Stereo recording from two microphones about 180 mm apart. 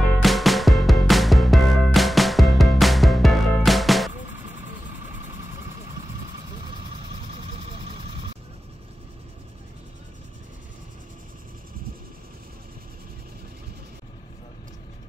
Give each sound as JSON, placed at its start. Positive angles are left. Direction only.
{"t": 0.2, "sound": "music", "side_deg": 0}
{"t": 7.8, "sound": "vehicle", "side_deg": -30}